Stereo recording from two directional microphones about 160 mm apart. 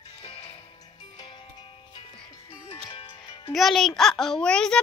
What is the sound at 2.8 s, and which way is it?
Music, 30° left (ahead or behind).